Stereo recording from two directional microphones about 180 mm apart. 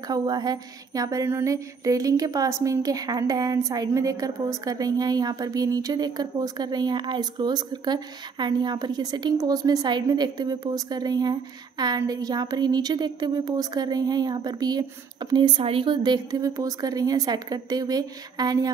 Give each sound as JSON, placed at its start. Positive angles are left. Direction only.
{"t": 0.1, "sound": "speech", "side_deg": -20}